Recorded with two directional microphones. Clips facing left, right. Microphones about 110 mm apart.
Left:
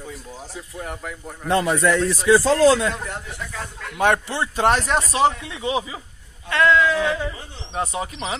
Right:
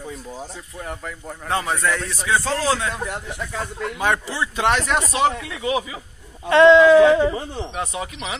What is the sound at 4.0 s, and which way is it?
Speech, 60° left (ahead or behind).